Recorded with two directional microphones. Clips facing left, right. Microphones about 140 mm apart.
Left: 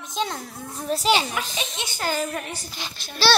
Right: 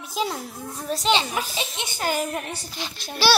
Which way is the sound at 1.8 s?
20° right (ahead or behind).